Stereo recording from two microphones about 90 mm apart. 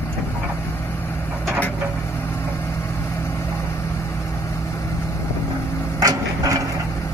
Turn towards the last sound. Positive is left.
turn(degrees=-45)  # may be behind; listen again after turning